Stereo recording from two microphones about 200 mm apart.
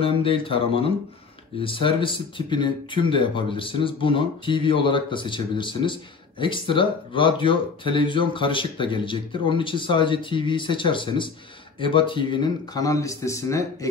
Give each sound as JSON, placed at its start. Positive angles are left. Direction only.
{"t": 0.0, "sound": "speech", "side_deg": 25}